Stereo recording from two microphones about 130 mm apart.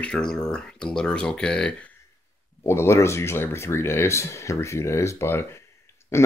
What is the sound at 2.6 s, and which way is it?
Speech, 20° left (ahead or behind).